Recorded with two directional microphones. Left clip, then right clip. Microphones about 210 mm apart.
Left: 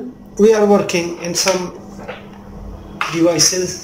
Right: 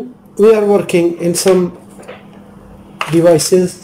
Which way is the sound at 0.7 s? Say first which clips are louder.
Right 4 dB; 20° right (ahead or behind).